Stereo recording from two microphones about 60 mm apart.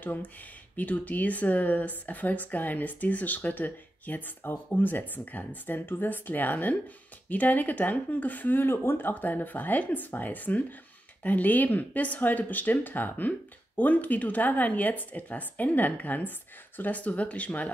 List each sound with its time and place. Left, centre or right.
0.7 s speech: left